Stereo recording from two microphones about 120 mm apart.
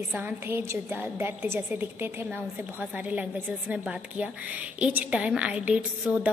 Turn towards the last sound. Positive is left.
turn(degrees=-10)  # may be behind; listen again after turning